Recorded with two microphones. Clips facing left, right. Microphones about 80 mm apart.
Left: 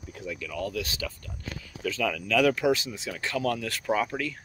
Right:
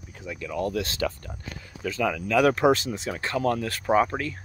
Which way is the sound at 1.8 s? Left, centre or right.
Centre.